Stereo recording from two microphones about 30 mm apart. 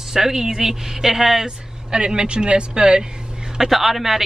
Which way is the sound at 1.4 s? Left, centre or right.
Right.